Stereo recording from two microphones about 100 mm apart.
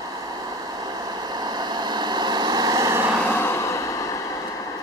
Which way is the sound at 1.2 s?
45° right (ahead or behind).